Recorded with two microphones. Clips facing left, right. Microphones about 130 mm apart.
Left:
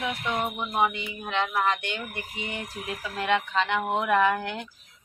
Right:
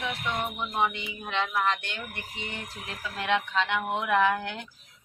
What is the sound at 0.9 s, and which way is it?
Speech, centre (ahead or behind).